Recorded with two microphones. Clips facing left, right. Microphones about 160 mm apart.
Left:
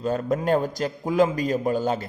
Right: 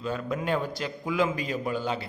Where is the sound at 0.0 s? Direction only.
40° left (ahead or behind).